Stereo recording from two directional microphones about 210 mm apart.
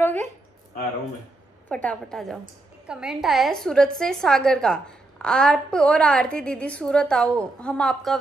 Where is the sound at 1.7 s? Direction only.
5° left (ahead or behind).